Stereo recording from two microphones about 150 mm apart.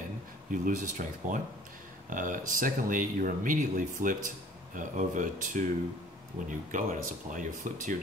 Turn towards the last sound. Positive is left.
turn(degrees=-60)  # may be behind; listen again after turning